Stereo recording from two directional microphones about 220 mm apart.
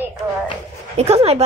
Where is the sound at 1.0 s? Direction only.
25° right (ahead or behind).